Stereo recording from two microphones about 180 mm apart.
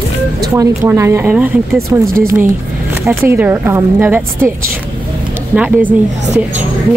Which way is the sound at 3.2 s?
10° right (ahead or behind).